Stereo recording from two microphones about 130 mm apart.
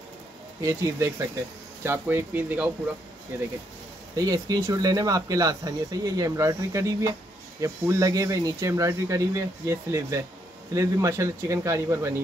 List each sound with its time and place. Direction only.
0.6 s speech: 25° right (ahead or behind)
4.1 s speech: 30° right (ahead or behind)